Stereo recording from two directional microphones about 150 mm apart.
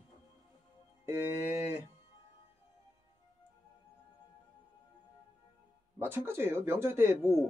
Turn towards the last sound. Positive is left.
turn(degrees=-15)  # may be behind; listen again after turning